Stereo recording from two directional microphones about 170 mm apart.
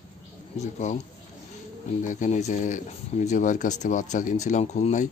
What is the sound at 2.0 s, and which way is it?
Speech, 50° left (ahead or behind).